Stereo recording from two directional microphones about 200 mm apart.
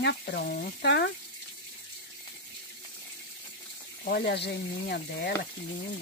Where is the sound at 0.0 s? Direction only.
55° left (ahead or behind).